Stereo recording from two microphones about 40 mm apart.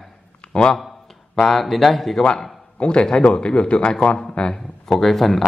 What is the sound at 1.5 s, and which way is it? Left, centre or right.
Speech, centre.